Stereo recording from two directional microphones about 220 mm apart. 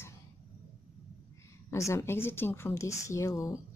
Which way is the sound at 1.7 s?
15° left (ahead or behind).